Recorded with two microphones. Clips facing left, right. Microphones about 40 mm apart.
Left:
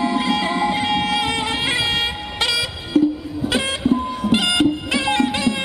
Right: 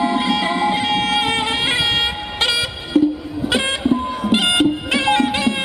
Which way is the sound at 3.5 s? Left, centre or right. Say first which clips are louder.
Right 1 dB; centre.